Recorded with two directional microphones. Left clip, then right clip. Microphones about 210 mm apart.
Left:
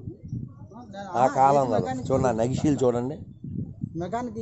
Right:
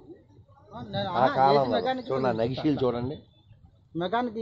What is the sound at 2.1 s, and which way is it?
A man's voice, 55° left (ahead or behind).